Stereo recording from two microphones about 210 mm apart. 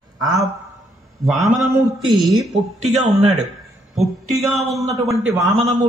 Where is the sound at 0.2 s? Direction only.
15° right (ahead or behind).